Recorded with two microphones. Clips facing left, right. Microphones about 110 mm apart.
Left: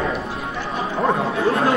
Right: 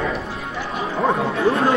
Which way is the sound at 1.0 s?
Centre (ahead or behind).